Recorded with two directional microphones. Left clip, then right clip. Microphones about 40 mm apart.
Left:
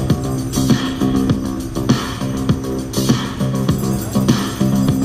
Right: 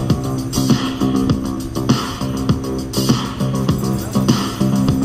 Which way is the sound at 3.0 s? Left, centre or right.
Right.